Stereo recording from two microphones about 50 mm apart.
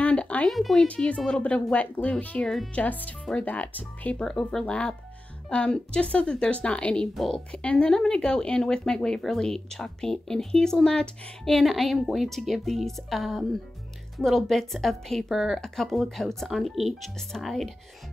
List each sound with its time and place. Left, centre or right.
0.0 s music: left
0.5 s speech: centre
0.7 s speech: left
2.4 s speech: centre
2.7 s speech: left
4.2 s speech: centre
11.5 s speech: centre
15.3 s speech: centre
15.6 s speech: centre